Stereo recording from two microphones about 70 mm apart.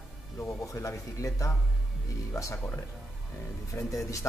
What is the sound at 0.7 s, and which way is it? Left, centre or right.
A man's voice, left.